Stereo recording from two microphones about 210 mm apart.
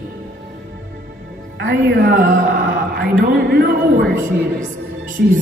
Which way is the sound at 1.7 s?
40° right (ahead or behind).